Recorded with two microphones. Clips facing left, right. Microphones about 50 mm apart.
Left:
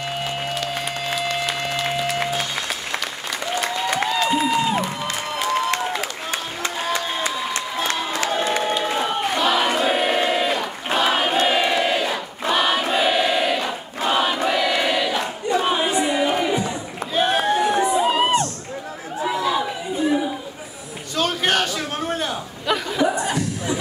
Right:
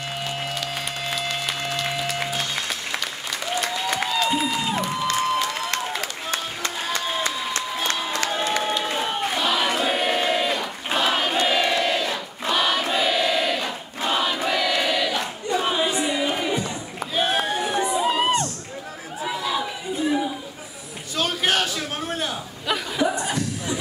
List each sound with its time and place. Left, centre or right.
1.1 s applause: centre
1.4 s music: centre
3.5 s applause: centre
8.8 s crowd: centre
11.4 s a sound: centre
15.5 s crowd: centre
16.3 s a sound: centre
17.9 s crowd: centre
19.2 s chatter: centre
21.2 s a sound: centre